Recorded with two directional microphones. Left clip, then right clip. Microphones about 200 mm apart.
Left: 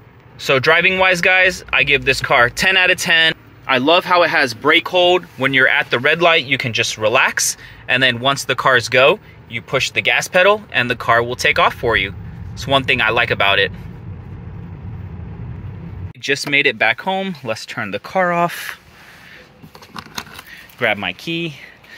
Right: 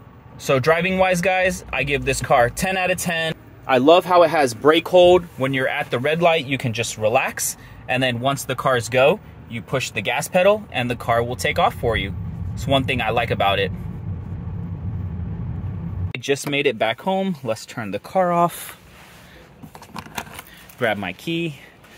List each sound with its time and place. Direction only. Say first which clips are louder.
0.4 s speech: left 5 dB; 10° right (ahead or behind)
5.4 s speech: left 8 dB; 5° right (ahead or behind)
16.2 s speech: left 6 dB; 15° right (ahead or behind)
19.9 s keys jangling: left 2 dB; 20° right (ahead or behind)
20.8 s speech: left 4 dB; 10° right (ahead or behind)